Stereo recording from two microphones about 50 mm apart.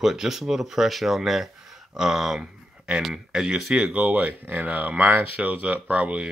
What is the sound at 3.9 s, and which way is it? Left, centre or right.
Speech, right.